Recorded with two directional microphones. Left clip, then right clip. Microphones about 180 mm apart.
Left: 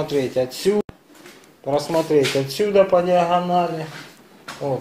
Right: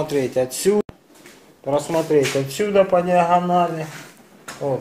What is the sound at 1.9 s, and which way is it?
Speech, 5° left (ahead or behind).